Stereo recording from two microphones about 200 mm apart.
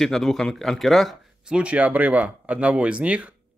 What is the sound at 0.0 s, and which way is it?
Speech, centre (ahead or behind).